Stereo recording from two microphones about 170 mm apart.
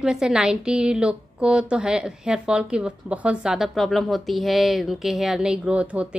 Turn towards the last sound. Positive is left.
turn(degrees=-5)  # may be behind; listen again after turning